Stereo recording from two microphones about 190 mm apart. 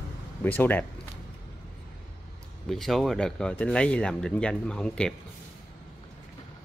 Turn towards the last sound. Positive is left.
turn(degrees=5)  # may be behind; listen again after turning